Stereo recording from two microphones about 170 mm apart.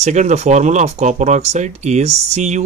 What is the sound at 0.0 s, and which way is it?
Speech, 45° right (ahead or behind).